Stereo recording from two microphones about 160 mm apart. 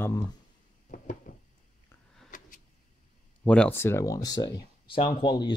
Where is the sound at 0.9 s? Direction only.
55° left (ahead or behind).